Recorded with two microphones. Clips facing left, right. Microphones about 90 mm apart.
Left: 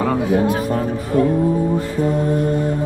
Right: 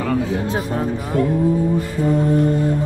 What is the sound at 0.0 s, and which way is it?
Speech, 15° left (ahead or behind).